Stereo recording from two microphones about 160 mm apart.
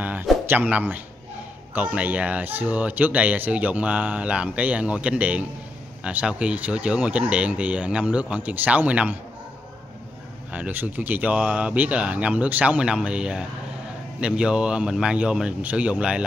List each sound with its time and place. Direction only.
0.5 s speech: 10° right (ahead or behind)
10.5 s speech: 10° right (ahead or behind)